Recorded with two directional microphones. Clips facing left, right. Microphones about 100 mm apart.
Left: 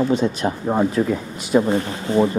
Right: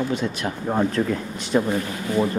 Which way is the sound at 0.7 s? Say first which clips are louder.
Left 2 dB; 10° left (ahead or behind).